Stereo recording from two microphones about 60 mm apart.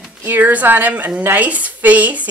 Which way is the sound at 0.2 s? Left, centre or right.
Right.